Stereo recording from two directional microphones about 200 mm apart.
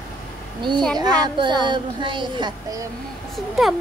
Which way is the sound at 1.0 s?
20° right (ahead or behind).